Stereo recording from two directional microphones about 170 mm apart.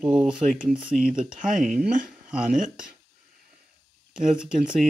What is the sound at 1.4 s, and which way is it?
Speech, 50° right (ahead or behind).